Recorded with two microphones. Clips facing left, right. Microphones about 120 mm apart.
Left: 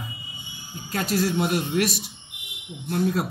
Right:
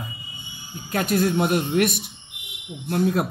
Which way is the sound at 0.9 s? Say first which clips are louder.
Right 3 dB; 55° right (ahead or behind).